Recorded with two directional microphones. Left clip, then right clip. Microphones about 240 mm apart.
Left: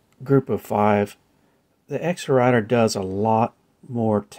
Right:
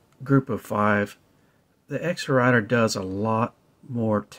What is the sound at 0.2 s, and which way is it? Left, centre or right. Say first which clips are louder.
Speech: left 4 dB; centre.